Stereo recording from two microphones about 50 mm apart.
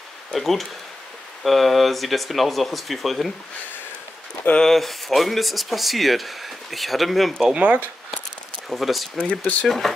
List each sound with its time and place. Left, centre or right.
0.3 s speech: centre
4.6 s speech: centre
7.5 s speech: right
8.6 s speech: centre